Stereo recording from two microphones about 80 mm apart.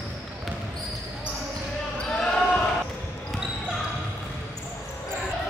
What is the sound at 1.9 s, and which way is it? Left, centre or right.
Basketball bounce, centre.